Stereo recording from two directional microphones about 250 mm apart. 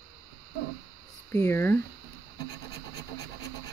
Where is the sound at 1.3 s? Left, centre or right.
Centre.